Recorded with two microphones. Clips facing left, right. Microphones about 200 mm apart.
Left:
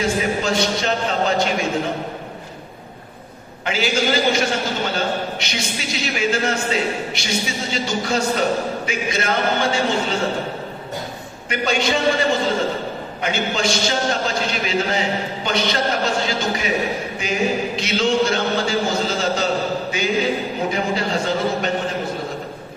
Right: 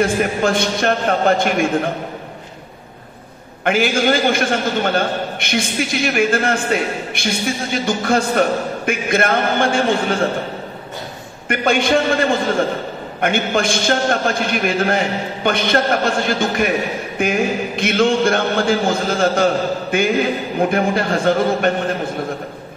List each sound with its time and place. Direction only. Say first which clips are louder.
0.0 s a man's voice: right 4 dB; 55° right (ahead or behind)
3.6 s a man's voice: right 5 dB; 55° right (ahead or behind)
11.4 s a man's voice: right 4 dB; 55° right (ahead or behind)